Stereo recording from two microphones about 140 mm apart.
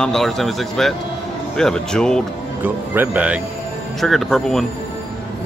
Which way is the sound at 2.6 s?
15° right (ahead or behind).